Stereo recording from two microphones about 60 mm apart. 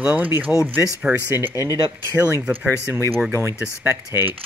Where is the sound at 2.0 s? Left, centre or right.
Right.